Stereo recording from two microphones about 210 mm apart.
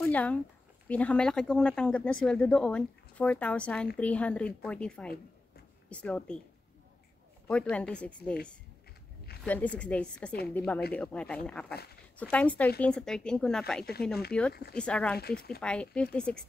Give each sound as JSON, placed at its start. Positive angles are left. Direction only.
{"t": 0.0, "sound": "speech", "side_deg": 5}
{"t": 7.4, "sound": "speech", "side_deg": 5}
{"t": 9.4, "sound": "speech", "side_deg": 5}
{"t": 14.5, "sound": "speech", "side_deg": 50}
{"t": 14.8, "sound": "speech", "side_deg": 5}